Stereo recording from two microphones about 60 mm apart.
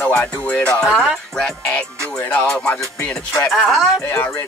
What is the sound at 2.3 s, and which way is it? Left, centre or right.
Music, centre.